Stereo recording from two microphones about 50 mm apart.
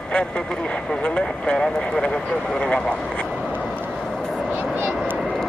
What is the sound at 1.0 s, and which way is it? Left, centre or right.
Speech, left.